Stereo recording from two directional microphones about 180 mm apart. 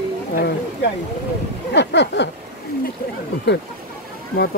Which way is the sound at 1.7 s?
70° left (ahead or behind).